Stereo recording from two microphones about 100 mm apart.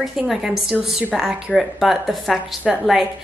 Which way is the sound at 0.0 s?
5° right (ahead or behind).